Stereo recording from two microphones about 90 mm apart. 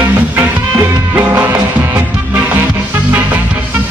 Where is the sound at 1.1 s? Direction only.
15° right (ahead or behind).